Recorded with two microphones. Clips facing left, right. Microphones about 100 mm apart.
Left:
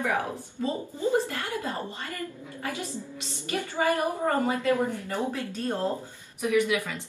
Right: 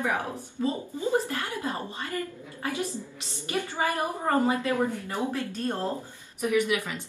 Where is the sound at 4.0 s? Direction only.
20° right (ahead or behind).